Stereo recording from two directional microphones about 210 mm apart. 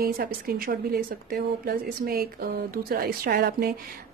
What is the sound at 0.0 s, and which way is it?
Speech, 45° right (ahead or behind).